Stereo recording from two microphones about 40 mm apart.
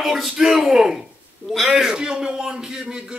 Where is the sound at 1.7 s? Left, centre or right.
Centre.